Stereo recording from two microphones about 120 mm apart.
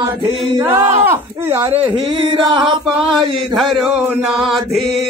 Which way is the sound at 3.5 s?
Centre (ahead or behind).